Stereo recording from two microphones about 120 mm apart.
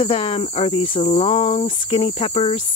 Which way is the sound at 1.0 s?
65° left (ahead or behind).